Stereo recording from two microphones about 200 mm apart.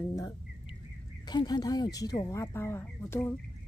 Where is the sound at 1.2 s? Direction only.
20° left (ahead or behind).